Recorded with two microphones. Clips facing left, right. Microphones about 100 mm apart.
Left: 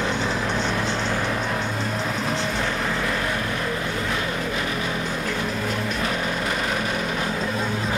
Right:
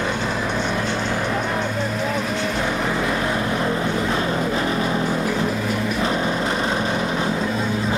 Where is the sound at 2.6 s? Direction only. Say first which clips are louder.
Right 3 dB; 10° right (ahead or behind).